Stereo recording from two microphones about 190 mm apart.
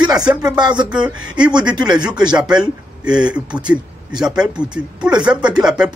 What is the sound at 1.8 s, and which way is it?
Speech, 20° right (ahead or behind).